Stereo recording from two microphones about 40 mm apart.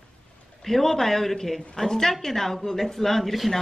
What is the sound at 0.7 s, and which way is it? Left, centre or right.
A woman's voice, centre.